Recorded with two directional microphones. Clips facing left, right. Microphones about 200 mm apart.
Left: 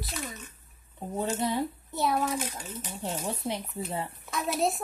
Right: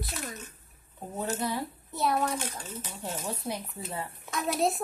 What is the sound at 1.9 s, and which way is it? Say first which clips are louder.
Speech: even; centre (ahead or behind).